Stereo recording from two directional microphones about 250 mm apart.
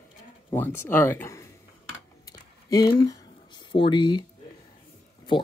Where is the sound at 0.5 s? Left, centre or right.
Centre.